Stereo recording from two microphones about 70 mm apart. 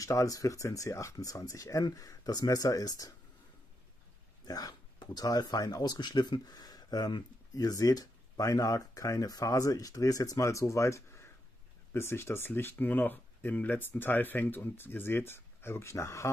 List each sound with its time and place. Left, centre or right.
0.0 s speech: left
4.5 s speech: left